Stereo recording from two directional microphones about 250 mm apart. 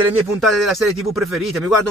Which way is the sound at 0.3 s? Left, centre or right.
Centre.